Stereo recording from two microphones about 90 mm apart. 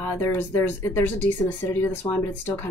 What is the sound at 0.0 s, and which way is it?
Speech, 30° left (ahead or behind).